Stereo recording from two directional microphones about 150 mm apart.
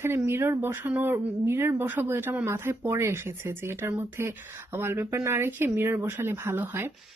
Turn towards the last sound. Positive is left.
turn(degrees=-15)  # may be behind; listen again after turning